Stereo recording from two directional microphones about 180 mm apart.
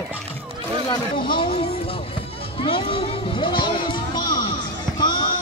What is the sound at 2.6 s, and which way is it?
Music, 30° left (ahead or behind).